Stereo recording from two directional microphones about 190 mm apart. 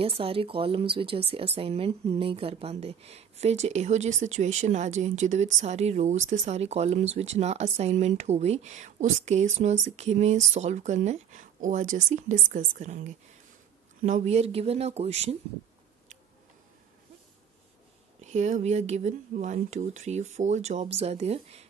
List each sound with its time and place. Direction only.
0.0 s speech: 30° right (ahead or behind)
18.2 s speech: 40° right (ahead or behind)